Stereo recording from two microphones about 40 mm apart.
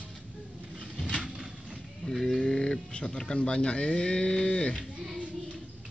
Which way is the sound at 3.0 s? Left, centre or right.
Centre.